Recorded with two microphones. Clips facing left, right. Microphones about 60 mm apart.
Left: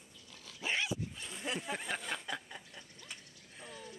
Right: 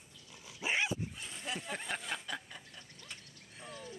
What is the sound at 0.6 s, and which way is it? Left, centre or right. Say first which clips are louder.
Dog: right 2 dB; centre.